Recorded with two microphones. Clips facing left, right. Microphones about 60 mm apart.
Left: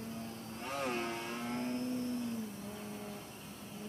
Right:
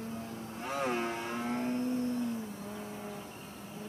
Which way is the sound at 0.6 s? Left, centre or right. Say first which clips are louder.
Right 4 dB; centre.